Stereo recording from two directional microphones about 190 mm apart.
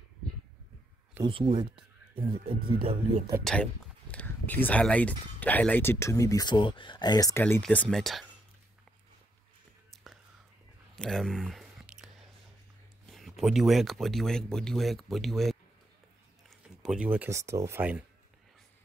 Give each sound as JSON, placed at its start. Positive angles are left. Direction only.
{"t": 1.2, "sound": "speech", "side_deg": -25}
{"t": 3.5, "sound": "speech", "side_deg": 0}
{"t": 11.0, "sound": "a sound", "side_deg": 0}
{"t": 13.0, "sound": "speech", "side_deg": 0}